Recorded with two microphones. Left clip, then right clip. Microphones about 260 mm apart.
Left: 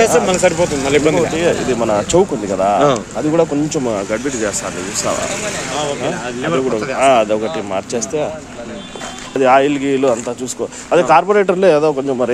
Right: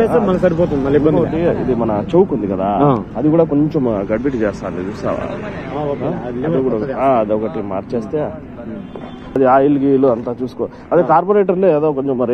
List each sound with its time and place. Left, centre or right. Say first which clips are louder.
0.3 s speech: left 1 dB; centre
1.1 s speech: left 1 dB; centre
6.0 s speech: left 1 dB; centre
9.4 s speech: even; centre